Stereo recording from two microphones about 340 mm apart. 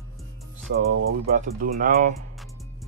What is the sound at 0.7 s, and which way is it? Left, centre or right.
Speech, right.